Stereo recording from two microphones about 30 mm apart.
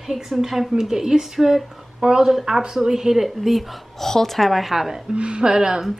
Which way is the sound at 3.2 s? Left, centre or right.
Centre.